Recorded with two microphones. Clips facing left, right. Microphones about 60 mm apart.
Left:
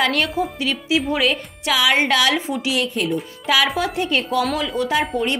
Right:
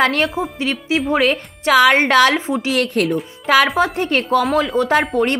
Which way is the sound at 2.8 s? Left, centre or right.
Right.